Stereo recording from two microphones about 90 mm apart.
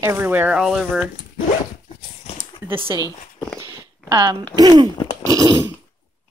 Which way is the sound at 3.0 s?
45° left (ahead or behind).